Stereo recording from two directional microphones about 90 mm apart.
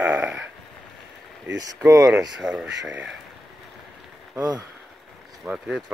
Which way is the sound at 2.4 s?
10° right (ahead or behind).